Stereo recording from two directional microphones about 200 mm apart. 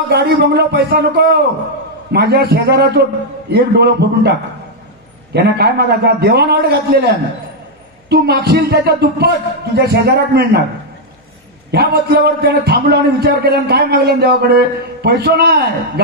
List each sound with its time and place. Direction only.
0.1 s a man's voice: 55° right (ahead or behind)
11.7 s a man's voice: 50° right (ahead or behind)